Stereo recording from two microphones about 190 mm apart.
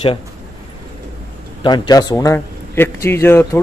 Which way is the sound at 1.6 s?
25° left (ahead or behind).